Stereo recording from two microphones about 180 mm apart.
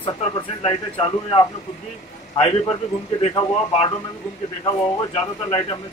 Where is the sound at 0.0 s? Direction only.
30° left (ahead or behind).